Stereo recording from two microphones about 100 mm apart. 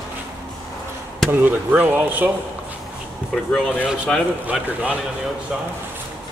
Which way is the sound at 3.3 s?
10° left (ahead or behind).